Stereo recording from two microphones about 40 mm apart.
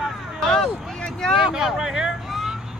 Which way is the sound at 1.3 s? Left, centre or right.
Centre.